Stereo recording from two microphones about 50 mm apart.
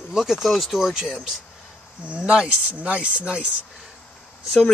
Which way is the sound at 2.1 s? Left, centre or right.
Right.